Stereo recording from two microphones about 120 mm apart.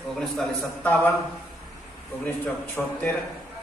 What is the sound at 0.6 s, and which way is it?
Speech, 15° left (ahead or behind).